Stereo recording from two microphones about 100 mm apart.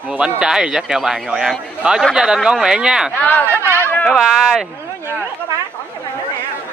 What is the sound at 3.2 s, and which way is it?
Speech, 15° left (ahead or behind).